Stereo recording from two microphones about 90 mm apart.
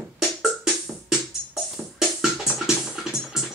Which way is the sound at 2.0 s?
5° right (ahead or behind).